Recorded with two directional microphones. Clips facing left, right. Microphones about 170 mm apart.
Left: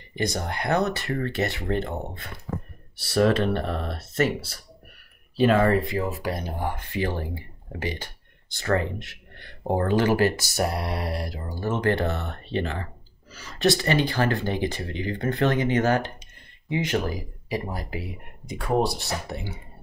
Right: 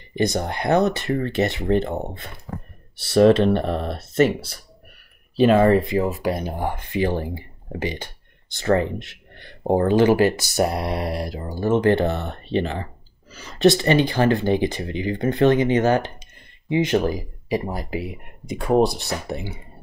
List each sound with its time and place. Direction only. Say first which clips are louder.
0.1 s speech: right 6 dB; 20° right (ahead or behind)
19.3 s speech: right 5 dB; 20° right (ahead or behind)